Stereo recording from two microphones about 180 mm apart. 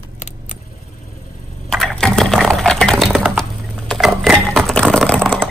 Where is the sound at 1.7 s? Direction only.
Centre (ahead or behind).